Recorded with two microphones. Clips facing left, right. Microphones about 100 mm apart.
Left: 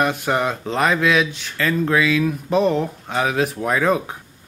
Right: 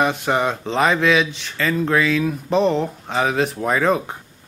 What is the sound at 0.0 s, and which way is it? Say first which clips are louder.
Speech: right 1 dB; centre (ahead or behind).